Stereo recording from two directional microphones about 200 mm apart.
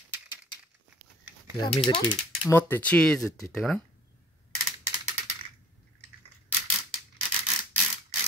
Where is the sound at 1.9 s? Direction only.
25° left (ahead or behind).